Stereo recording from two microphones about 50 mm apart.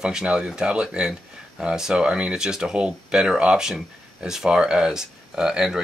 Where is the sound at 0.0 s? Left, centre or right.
Centre.